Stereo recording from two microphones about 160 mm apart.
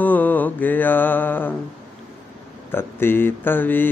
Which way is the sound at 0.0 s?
10° left (ahead or behind).